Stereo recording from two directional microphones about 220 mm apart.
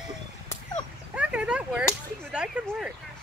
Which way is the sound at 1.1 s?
5° right (ahead or behind).